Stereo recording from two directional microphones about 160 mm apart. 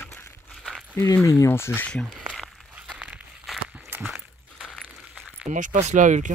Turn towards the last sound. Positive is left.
turn(degrees=-50)  # may be behind; listen again after turning